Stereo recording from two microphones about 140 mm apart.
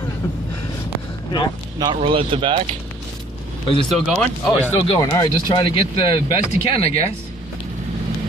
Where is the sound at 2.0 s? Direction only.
40° right (ahead or behind).